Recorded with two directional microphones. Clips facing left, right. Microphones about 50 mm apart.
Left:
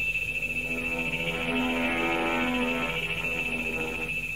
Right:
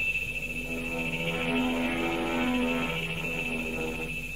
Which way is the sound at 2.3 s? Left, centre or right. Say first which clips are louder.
Even; left.